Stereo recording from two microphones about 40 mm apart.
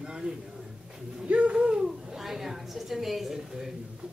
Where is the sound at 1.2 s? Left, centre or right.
Right.